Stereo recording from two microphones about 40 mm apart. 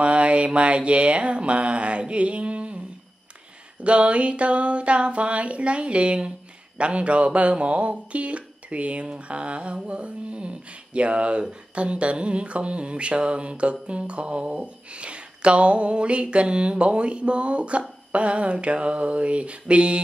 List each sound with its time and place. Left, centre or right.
0.0 s mantra: right
3.8 s speech: right
11.7 s mantra: right
18.1 s speech: right